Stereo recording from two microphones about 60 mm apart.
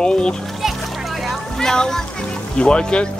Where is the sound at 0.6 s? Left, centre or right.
Centre.